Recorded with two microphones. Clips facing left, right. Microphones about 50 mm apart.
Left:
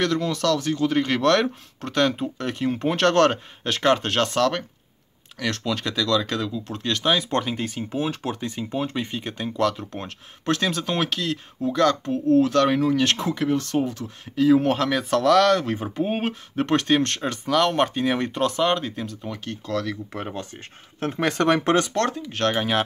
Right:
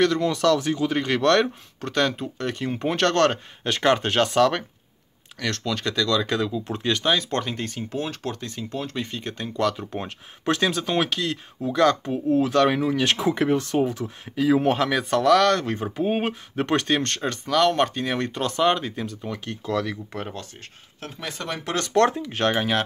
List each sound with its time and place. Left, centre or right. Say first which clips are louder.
0.0 s speech: right 3 dB; centre
5.4 s speech: left 1 dB; centre
13.3 s speech: right 2 dB; right
13.6 s speech: right 1 dB; centre
20.1 s speech: left 1 dB; centre
21.0 s speech: left 11 dB; left
21.3 s speech: left 11 dB; left
22.3 s speech: right 1 dB; centre